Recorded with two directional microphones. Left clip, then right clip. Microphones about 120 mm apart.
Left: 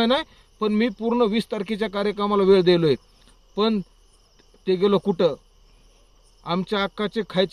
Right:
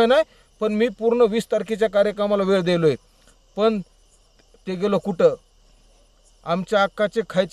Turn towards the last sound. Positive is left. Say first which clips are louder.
# right 3 dB
turn(degrees=-35)  # may be behind; listen again after turning